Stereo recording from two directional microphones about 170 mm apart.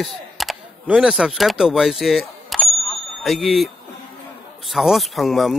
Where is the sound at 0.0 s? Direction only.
Centre (ahead or behind).